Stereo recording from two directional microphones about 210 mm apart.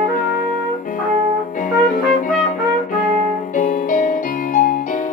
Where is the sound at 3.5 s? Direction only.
40° left (ahead or behind).